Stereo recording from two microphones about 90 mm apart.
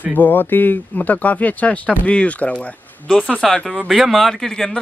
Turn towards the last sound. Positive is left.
turn(degrees=5)  # may be behind; listen again after turning